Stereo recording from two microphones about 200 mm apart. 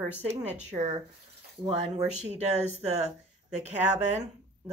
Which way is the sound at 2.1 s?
35° right (ahead or behind).